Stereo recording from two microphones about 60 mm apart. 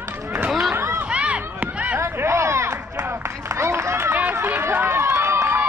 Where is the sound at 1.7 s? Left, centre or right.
Right.